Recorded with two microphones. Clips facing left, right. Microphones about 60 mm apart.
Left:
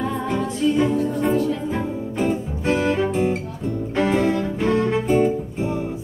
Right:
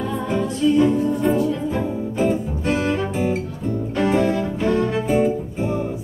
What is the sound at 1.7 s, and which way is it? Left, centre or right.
Music, centre.